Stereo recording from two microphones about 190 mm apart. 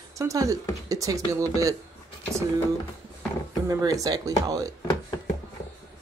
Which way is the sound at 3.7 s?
20° right (ahead or behind).